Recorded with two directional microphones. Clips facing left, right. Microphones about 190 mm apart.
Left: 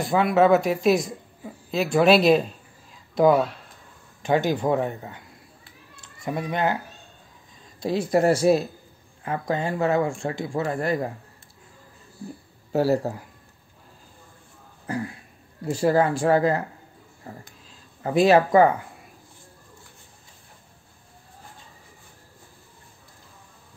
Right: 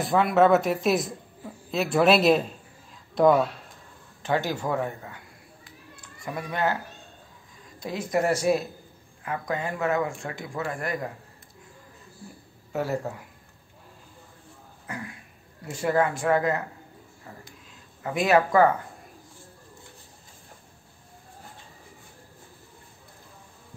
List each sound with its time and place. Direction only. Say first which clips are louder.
0.0 s a woman's voice: left 1 dB; centre (ahead or behind)
4.2 s speech: left 5 dB; 15° left (ahead or behind)
5.9 s a sound: left 5 dB; 25° left (ahead or behind)
7.8 s speech: left 5 dB; 30° left (ahead or behind)
12.7 s speech: left 7 dB; 35° left (ahead or behind)
14.9 s speech: left 8 dB; 35° left (ahead or behind)